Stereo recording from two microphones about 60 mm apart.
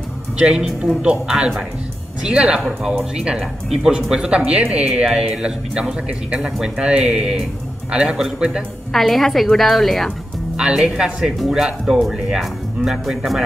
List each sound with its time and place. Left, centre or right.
0.4 s speech: centre
8.9 s a woman's voice: centre
10.5 s speech: centre